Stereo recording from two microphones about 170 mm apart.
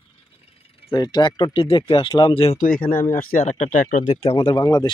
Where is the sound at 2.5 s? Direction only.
55° left (ahead or behind).